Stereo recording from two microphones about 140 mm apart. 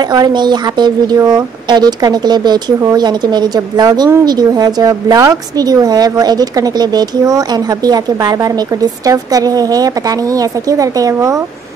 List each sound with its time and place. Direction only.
0.1 s a woman's voice: 30° right (ahead or behind)